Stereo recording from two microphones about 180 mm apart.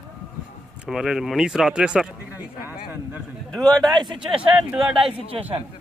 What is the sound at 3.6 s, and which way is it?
Speech, 25° right (ahead or behind).